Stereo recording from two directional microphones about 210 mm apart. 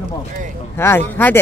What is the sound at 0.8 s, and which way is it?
Speech, 10° left (ahead or behind).